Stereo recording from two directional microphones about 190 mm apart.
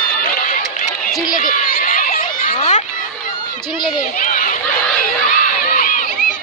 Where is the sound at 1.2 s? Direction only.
45° left (ahead or behind).